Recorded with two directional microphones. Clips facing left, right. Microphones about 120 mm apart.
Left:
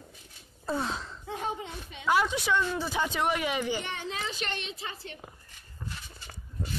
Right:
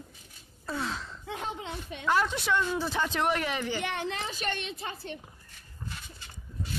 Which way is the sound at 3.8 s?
65° right (ahead or behind).